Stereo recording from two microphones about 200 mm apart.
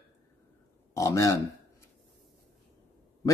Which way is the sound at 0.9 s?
15° left (ahead or behind).